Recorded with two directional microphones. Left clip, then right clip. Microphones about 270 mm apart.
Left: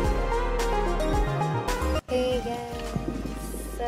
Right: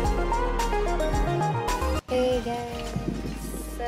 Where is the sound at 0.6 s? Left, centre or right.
Centre.